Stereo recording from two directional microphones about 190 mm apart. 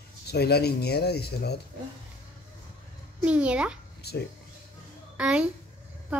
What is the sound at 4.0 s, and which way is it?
Speech, 60° left (ahead or behind).